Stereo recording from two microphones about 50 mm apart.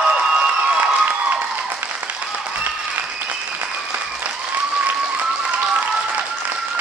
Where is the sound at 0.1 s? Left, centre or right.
Right.